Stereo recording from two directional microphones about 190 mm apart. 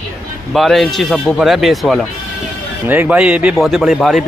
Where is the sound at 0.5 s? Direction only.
Centre (ahead or behind).